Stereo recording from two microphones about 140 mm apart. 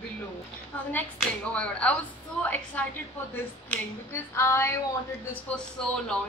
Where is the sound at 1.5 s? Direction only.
10° left (ahead or behind).